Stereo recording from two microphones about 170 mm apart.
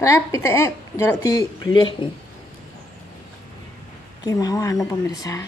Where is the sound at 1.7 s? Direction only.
30° left (ahead or behind).